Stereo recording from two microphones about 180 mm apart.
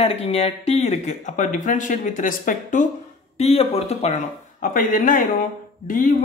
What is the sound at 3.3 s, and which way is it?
Speech, 35° left (ahead or behind).